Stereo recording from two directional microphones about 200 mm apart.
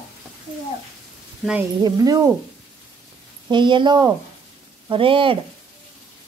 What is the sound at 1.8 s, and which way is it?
Speech, 20° right (ahead or behind).